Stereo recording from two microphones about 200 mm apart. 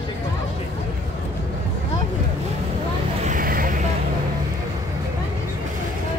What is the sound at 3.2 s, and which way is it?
Vehicle, 45° right (ahead or behind).